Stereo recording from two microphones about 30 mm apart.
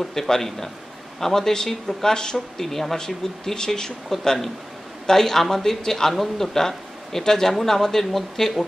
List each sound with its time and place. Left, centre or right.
0.0 s a man's voice: centre; by 2.6 s left
2.6 s speech: centre
3.5 s speech: left
6.1 s speech: centre